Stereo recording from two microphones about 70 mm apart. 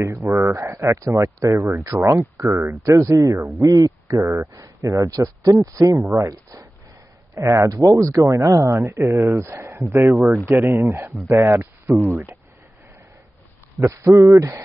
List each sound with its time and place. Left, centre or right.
0.0 s speech: right
2.8 s speech: right
5.9 s speech: right
6.3 s speech: right
8.8 s speech: right
13.7 s speech: right